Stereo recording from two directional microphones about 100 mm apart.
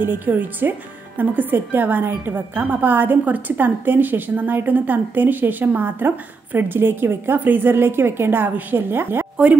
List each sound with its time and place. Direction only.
0.0 s speech: 20° right (ahead or behind)